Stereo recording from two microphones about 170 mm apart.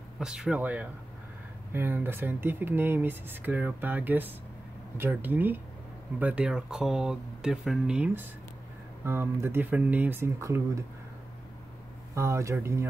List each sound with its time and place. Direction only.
0.2 s speech: 5° right (ahead or behind)
12.2 s speech: 15° right (ahead or behind)